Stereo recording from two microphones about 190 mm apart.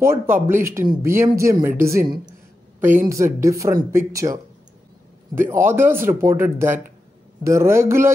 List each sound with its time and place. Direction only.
0.0 s speech: 10° right (ahead or behind)